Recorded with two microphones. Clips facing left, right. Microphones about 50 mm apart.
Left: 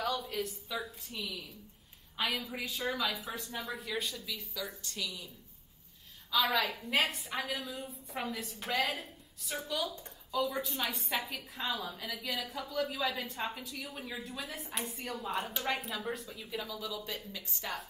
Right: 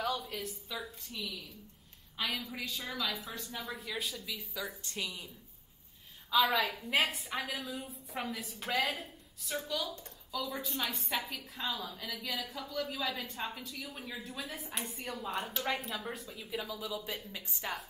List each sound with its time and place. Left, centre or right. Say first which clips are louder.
0.0 s a woman's voice: left 1 dB; centre
4.8 s a woman's voice: even; right
6.3 s a woman's voice: right 1 dB; centre